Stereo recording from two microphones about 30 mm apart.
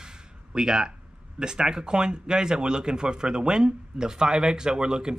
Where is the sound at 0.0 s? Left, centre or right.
Right.